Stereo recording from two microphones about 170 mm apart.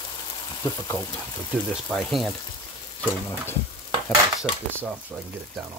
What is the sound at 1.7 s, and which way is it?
Speech, centre (ahead or behind).